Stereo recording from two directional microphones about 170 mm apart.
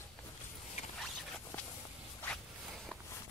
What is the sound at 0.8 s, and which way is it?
Zipper, 40° left (ahead or behind).